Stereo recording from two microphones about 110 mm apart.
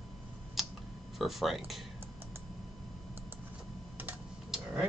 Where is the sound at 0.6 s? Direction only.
Centre (ahead or behind).